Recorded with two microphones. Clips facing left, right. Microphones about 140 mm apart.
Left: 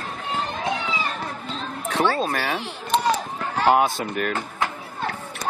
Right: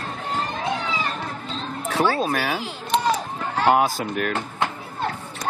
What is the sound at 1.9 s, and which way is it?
Speech, centre (ahead or behind).